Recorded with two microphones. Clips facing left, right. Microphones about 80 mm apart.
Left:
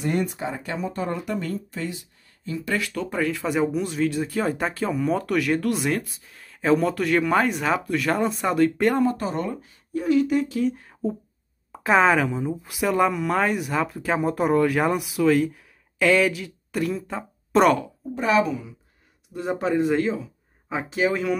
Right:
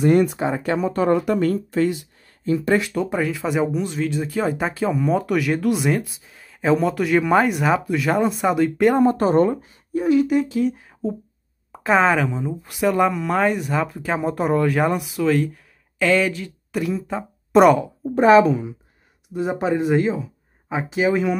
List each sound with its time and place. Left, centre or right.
0.0 s speech: right
2.6 s speech: right; by 8.9 s centre
9.0 s a woman's voice: right
9.6 s speech: centre
18.1 s a woman's voice: right
19.3 s speech: centre